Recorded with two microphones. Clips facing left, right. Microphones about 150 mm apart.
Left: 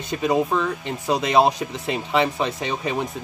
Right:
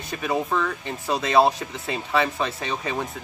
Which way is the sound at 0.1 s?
20° left (ahead or behind).